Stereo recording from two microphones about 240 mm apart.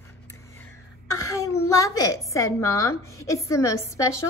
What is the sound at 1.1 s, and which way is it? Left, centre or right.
A woman's voice, centre.